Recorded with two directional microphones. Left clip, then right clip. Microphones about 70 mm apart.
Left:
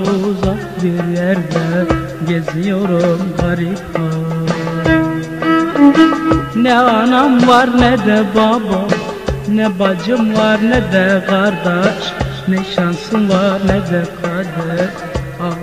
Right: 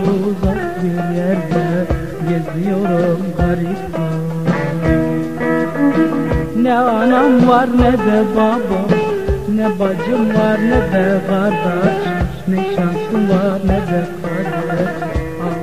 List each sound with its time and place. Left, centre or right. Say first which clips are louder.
1.2 s music: left 1 dB; left
5.4 s music: left 6 dB; left
13.3 s music: left 5 dB; left